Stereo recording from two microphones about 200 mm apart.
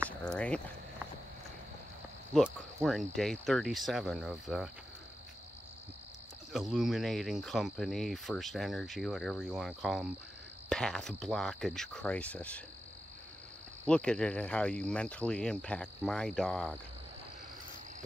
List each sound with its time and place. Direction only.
0.2 s speech: 5° left (ahead or behind)
2.3 s speech: centre (ahead or behind)
6.5 s speech: centre (ahead or behind)
13.8 s speech: 5° left (ahead or behind)